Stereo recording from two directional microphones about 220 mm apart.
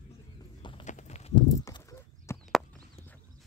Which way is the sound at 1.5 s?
15° left (ahead or behind).